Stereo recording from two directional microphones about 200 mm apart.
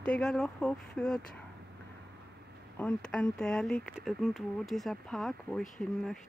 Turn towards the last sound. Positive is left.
turn(degrees=0)  # may be behind; listen again after turning